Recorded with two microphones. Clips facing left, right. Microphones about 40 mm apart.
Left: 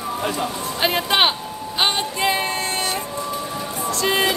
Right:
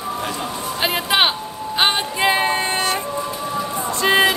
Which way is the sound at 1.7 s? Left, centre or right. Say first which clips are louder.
Right 2 dB; centre.